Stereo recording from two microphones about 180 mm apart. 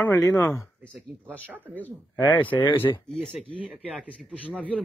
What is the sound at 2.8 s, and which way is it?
Speech, 30° left (ahead or behind).